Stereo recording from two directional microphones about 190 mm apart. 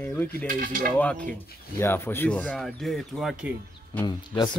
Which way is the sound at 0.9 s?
5° left (ahead or behind).